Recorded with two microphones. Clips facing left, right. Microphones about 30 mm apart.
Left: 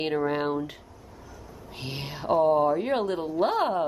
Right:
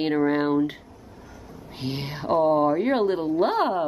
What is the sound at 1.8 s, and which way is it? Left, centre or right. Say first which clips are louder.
A woman's voice: right 5 dB; centre.